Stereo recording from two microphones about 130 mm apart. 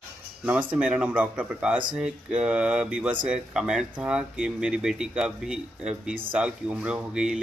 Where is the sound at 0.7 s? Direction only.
10° right (ahead or behind).